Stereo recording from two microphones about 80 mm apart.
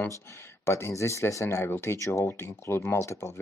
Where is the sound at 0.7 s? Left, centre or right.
Left.